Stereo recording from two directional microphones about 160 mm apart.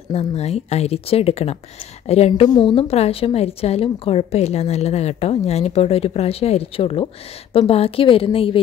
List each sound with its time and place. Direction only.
0.1 s a woman's voice: 40° left (ahead or behind)
2.5 s a woman's voice: 30° left (ahead or behind)